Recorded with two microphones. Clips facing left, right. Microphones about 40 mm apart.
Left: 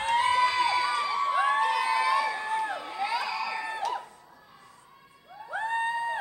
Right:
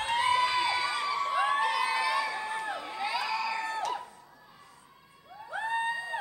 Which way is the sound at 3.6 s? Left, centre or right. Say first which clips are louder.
Left 1 dB; centre.